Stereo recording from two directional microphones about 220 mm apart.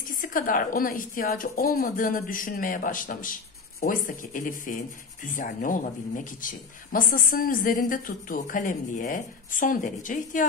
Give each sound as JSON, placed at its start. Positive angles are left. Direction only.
{"t": 0.0, "sound": "speech", "side_deg": 40}